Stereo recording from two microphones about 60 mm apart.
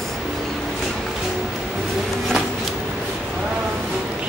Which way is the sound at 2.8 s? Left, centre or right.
Centre.